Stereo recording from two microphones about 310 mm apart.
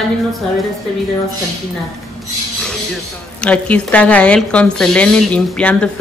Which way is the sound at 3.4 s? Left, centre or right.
Centre.